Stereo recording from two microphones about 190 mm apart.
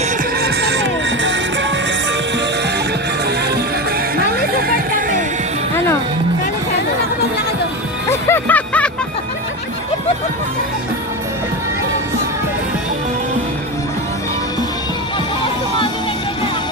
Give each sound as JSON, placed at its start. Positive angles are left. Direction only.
{"t": 0.4, "sound": "music", "side_deg": -65}
{"t": 8.1, "sound": "music", "side_deg": 10}